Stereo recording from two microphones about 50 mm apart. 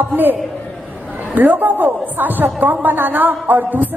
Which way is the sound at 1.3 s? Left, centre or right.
Right.